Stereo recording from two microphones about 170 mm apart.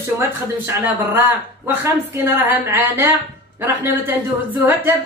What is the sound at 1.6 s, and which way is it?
A woman's voice, 15° right (ahead or behind).